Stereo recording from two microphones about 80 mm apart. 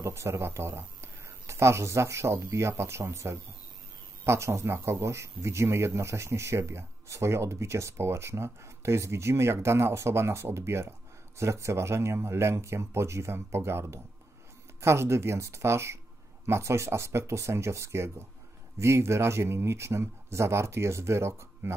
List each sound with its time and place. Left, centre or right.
0.0 s speech: right